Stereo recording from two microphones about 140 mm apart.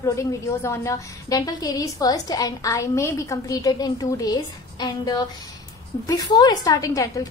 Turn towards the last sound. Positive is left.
turn(degrees=25)  # may be behind; listen again after turning